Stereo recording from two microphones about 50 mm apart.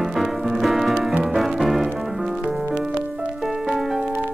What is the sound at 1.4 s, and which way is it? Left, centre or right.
Music, centre.